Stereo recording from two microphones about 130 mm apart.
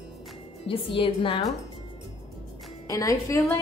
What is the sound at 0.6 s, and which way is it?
Speech, 40° left (ahead or behind).